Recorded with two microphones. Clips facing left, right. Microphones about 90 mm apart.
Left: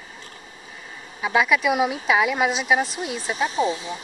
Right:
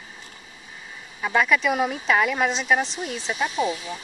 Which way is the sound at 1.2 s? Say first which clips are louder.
Left 1 dB; 5° left (ahead or behind).